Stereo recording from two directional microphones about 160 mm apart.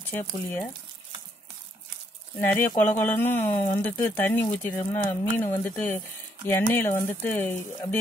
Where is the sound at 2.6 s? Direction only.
10° left (ahead or behind).